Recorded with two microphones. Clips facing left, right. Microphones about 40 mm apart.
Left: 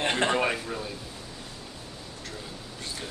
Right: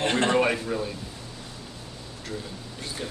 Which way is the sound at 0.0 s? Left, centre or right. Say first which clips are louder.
Right 2 dB; centre.